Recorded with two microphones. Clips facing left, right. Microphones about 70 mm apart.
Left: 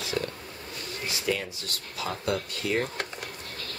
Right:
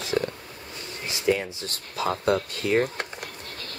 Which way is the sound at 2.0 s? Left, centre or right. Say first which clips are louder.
Right 6 dB; right.